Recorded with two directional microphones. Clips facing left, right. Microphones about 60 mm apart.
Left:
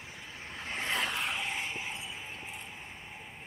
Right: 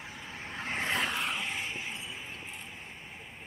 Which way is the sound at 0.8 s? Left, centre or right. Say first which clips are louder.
Right 1 dB; centre.